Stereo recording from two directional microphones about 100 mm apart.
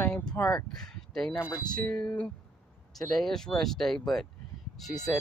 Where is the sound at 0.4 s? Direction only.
20° left (ahead or behind).